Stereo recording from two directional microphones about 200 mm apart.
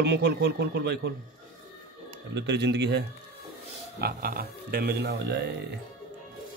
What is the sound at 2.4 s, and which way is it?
Speech, 60° right (ahead or behind).